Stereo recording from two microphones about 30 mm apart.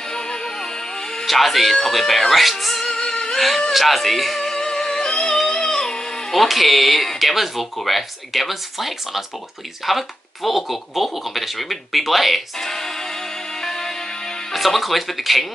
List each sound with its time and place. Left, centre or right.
0.1 s music: left
1.2 s speech: centre
2.8 s music: centre
3.3 s speech: centre
4.5 s music: centre
6.3 s speech: centre
12.5 s music: centre
14.5 s speech: centre